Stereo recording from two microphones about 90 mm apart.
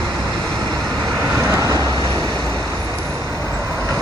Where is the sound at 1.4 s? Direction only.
35° right (ahead or behind).